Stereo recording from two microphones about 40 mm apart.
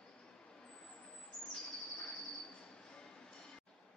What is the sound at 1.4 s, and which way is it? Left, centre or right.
Bird, centre.